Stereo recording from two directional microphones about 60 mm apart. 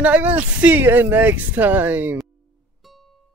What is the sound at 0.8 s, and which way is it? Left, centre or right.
Speech, right.